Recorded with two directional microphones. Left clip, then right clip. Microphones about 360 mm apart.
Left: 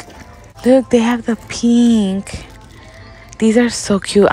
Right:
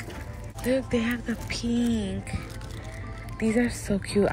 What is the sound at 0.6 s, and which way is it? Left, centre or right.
Speech, centre.